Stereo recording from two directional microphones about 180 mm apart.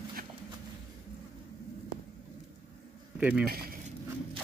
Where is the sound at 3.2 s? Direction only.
5° right (ahead or behind).